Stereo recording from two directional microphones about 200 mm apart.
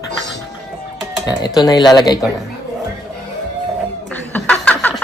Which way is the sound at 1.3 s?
20° left (ahead or behind).